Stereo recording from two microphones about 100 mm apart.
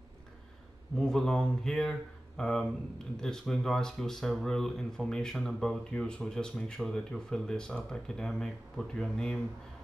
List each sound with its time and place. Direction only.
0.9 s speech: 5° left (ahead or behind)